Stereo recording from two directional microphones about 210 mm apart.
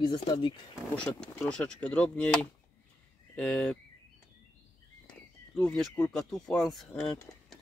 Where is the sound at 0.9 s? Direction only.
5° left (ahead or behind).